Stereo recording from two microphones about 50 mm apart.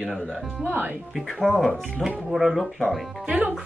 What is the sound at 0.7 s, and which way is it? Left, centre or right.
Speech, right.